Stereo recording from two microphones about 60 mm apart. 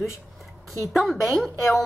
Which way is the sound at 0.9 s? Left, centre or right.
Centre.